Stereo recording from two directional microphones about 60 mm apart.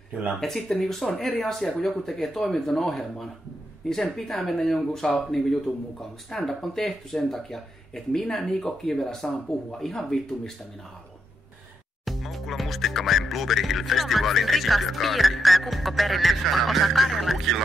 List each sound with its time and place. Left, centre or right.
0.4 s speech: centre
12.0 s speech: centre